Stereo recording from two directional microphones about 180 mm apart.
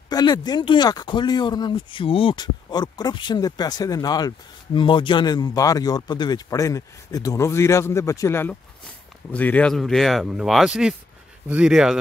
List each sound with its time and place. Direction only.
0.1 s speech: 25° left (ahead or behind); by 12.0 s 5° right (ahead or behind)